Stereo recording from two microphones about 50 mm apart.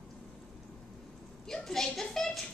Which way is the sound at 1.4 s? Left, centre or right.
Centre.